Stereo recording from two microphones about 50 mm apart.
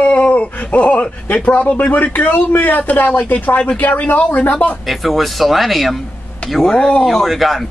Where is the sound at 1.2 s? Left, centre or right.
Left.